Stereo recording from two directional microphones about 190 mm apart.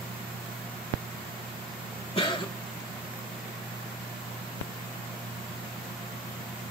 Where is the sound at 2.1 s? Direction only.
25° left (ahead or behind).